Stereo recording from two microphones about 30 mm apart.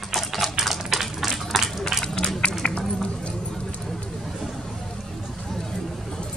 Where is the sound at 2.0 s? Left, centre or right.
Left.